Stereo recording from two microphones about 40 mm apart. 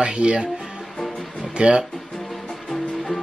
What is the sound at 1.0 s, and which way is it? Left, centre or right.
Music, centre.